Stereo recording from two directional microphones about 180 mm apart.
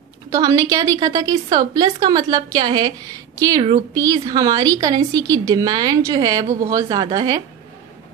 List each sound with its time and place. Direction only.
0.3 s a woman's voice: 20° right (ahead or behind)